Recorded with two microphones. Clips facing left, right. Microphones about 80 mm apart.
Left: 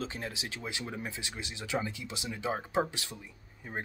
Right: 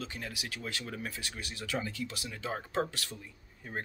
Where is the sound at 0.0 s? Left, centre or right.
Left.